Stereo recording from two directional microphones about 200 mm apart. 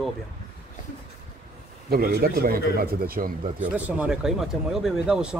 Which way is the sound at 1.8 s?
50° right (ahead or behind).